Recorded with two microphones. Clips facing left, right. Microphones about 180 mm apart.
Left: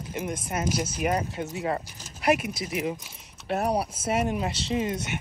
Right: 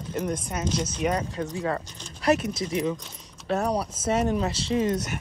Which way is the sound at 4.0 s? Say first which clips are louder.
Right 2 dB; 30° right (ahead or behind).